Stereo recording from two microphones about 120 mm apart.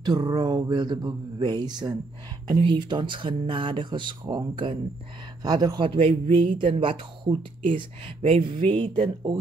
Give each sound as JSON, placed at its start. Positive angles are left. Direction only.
{"t": 0.0, "sound": "speech", "side_deg": -35}
{"t": 6.5, "sound": "speech", "side_deg": -45}
{"t": 7.7, "sound": "speech", "side_deg": -55}
{"t": 8.8, "sound": "speech", "side_deg": -45}